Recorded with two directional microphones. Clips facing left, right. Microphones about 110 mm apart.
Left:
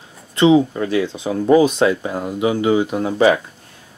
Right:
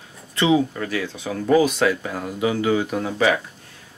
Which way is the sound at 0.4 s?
25° left (ahead or behind).